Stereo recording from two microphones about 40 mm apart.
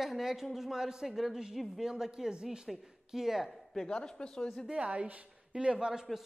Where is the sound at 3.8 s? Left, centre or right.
Left.